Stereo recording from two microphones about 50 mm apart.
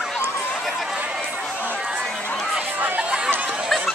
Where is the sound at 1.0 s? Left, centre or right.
Right.